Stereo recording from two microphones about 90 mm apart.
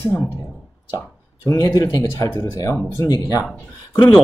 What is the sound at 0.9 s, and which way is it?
Speech, 35° left (ahead or behind).